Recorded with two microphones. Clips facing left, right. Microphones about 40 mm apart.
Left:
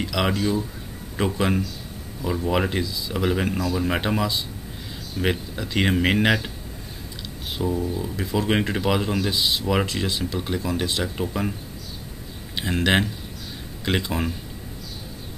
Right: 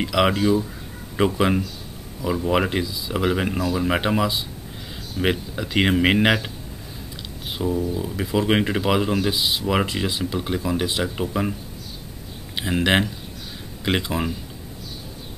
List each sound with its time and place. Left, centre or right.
0.0 s speech: centre
7.5 s speech: centre
12.5 s speech: centre